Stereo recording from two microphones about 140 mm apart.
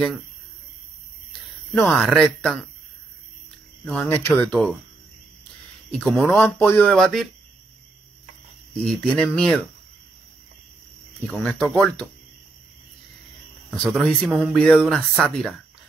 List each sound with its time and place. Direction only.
1.9 s speech: centre (ahead or behind)
3.8 s speech: 5° left (ahead or behind)
5.9 s speech: centre (ahead or behind)
6.3 s speech: 15° left (ahead or behind)
8.7 s speech: 5° left (ahead or behind)
11.2 s speech: 5° left (ahead or behind)
13.7 s speech: 5° left (ahead or behind)